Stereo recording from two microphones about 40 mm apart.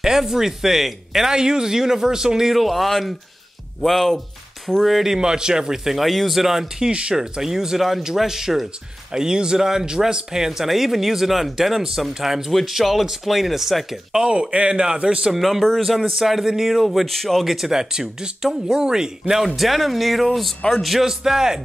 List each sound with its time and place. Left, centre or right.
0.0 s a man's voice: centre
2.5 s speech: centre
4.8 s a man's voice: centre
5.9 s speech: centre
6.8 s a man's voice: right
7.2 s a man's voice: centre
14.2 s a man's voice: right
15.3 s a man's voice: centre
19.4 s a man's voice: centre